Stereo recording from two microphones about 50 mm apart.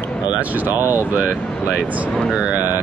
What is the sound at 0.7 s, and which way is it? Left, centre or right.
Speech, right.